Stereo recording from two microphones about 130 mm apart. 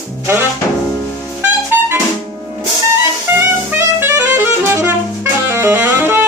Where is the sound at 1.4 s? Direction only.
20° right (ahead or behind).